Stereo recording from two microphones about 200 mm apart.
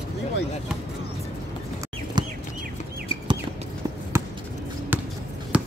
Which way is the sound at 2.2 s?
20° right (ahead or behind).